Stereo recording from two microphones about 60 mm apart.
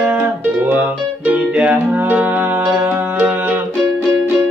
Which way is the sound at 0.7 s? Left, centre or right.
Right.